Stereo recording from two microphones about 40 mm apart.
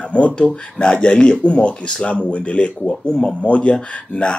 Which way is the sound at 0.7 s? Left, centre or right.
Left.